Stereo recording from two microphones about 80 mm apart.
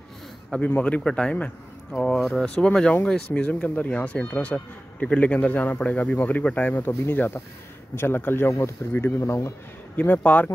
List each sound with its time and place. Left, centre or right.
0.7 s speech: centre
6.7 s speech: left
9.9 s speech: left